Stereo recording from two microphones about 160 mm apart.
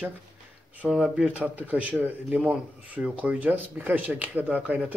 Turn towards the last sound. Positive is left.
turn(degrees=-10)  # may be behind; listen again after turning